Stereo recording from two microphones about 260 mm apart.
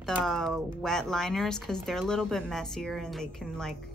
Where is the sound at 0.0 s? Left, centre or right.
Centre.